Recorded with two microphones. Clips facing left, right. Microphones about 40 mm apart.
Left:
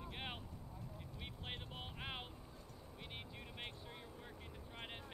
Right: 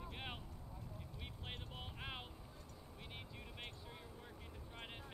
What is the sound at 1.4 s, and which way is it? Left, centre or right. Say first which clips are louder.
Vehicle: left 2 dB; centre.